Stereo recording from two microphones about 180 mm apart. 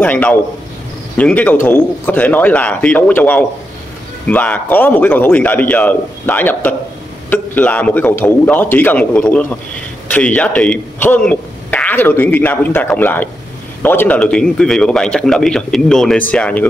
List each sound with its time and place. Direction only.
0.0 s a man's voice: 10° left (ahead or behind)